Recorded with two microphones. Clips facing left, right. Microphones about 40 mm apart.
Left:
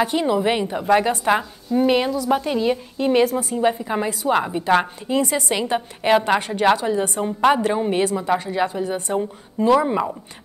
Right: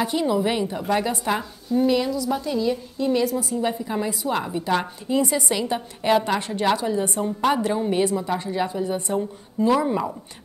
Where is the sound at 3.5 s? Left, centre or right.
Left.